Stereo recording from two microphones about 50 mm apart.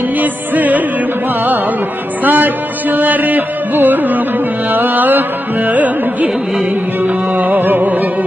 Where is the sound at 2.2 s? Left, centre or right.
Right.